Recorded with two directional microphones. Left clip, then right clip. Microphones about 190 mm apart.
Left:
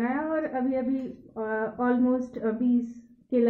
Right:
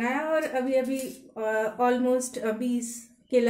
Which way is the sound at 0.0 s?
15° right (ahead or behind).